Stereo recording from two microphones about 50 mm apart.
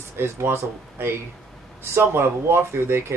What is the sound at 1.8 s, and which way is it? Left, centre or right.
Speech, right.